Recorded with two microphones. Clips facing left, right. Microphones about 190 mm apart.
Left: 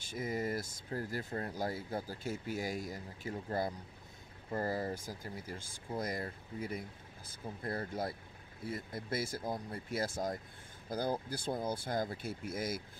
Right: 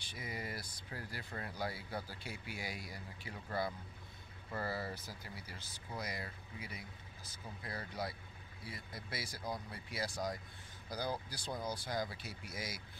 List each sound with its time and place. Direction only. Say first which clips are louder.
0.0 s speech: left 9 dB; 45° left (ahead or behind)